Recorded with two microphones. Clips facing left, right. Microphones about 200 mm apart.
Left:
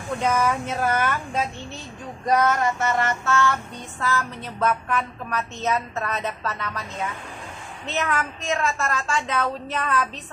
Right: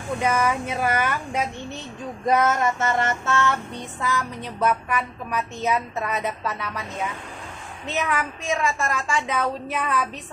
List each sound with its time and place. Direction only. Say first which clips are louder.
0.2 s a woman's voice: even; 10° right (ahead or behind)
2.2 s female singing: even; 20° right (ahead or behind)
4.0 s a woman's voice: left 1 dB; 15° right (ahead or behind)